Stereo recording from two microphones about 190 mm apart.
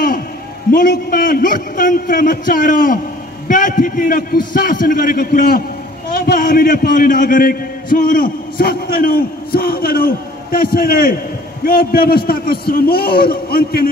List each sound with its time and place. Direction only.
0.7 s a man's voice: 50° left (ahead or behind)